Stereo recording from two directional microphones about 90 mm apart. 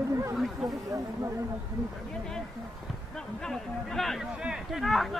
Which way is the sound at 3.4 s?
5° left (ahead or behind).